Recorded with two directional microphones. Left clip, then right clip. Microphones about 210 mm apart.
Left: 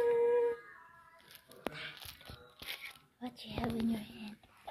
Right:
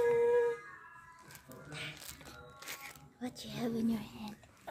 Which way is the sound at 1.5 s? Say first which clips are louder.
Left 2 dB; 25° right (ahead or behind).